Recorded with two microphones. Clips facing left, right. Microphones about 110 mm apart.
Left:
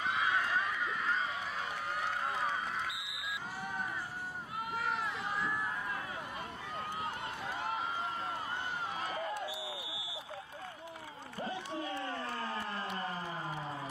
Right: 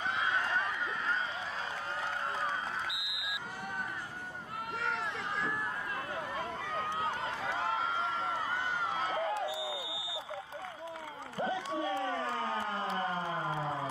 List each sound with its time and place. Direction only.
0.0 s run: 30° right (ahead or behind)
4.7 s run: 90° right
7.1 s run: 85° right
8.0 s run: 30° right (ahead or behind)
9.6 s a sound: centre (ahead or behind)
11.3 s a sound: 30° right (ahead or behind)